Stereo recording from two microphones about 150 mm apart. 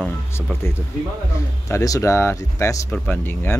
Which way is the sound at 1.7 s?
20° left (ahead or behind).